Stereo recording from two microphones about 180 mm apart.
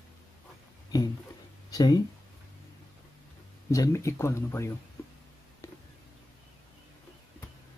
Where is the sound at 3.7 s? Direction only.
15° left (ahead or behind).